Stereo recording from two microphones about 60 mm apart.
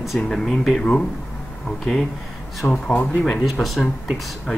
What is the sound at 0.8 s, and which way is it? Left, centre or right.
Speech, centre.